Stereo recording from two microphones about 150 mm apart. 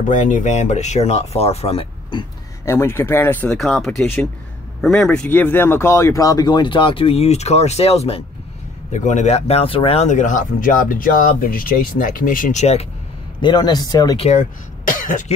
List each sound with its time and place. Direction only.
0.0 s speech: 60° left (ahead or behind); by 2.2 s 35° left (ahead or behind)
2.6 s speech: 20° left (ahead or behind); by 12.8 s 50° left (ahead or behind)
13.4 s speech: 30° left (ahead or behind)
14.1 s speech: 45° left (ahead or behind)
14.4 s speech: 60° left (ahead or behind)